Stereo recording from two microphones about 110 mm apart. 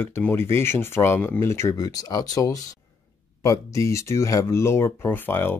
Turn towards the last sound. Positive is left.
turn(degrees=20)  # may be behind; listen again after turning